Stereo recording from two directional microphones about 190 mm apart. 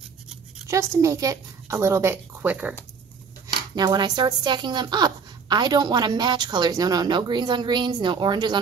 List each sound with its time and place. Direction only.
0.7 s a woman's voice: 15° right (ahead or behind)
3.7 s a woman's voice: 20° right (ahead or behind)